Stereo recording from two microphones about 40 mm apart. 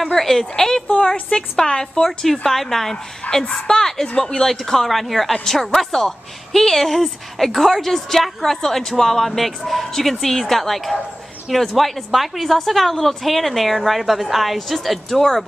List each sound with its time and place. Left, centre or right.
0.1 s a woman's voice: centre
3.3 s a woman's voice: left
3.6 s a woman's voice: centre
4.5 s a woman's voice: centre